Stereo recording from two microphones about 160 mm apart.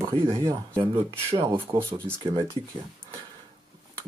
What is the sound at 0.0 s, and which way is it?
Speech, 25° right (ahead or behind).